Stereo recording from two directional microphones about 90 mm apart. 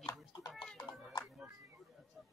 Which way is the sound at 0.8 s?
40° left (ahead or behind).